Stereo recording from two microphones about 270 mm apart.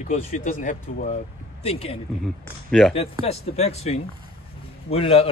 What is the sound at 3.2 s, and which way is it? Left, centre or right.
Speech, left.